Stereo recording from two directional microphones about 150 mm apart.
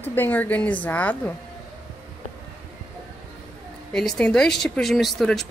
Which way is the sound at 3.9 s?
5° left (ahead or behind).